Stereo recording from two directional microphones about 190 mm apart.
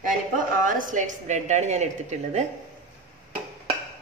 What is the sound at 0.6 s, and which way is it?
A woman's voice, 45° right (ahead or behind).